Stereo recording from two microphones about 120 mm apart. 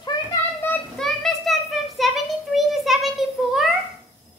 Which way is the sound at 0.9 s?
5° left (ahead or behind).